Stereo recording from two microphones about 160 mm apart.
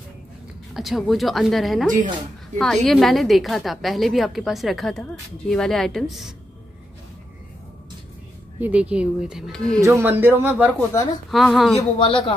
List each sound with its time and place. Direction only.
0.7 s a woman's voice: centre (ahead or behind)
8.5 s a woman's voice: 10° right (ahead or behind)
9.8 s a man's voice: 15° right (ahead or behind)
10.7 s speech: 15° left (ahead or behind)
11.2 s a woman's voice: centre (ahead or behind)
12.0 s a man's voice: 35° left (ahead or behind)